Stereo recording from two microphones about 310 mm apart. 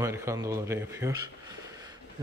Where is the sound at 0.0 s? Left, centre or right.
Centre.